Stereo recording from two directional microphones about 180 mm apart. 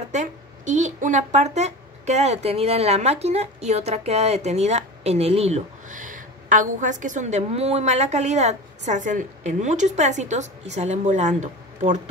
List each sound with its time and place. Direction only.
0.1 s speech: 45° right (ahead or behind)